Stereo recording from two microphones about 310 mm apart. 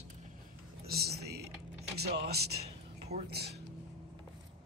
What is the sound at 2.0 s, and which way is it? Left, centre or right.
Speech, right.